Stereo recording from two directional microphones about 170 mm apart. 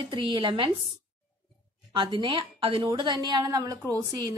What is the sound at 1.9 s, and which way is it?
A woman's voice, 30° right (ahead or behind).